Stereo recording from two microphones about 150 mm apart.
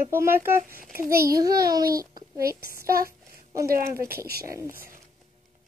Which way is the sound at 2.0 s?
25° right (ahead or behind).